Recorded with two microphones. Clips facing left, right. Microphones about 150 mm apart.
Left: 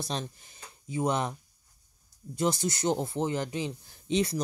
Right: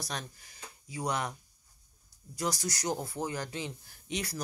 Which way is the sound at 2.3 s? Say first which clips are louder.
Left 6 dB; 25° left (ahead or behind).